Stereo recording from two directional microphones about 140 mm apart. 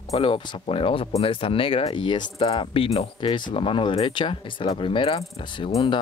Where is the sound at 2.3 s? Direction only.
45° left (ahead or behind).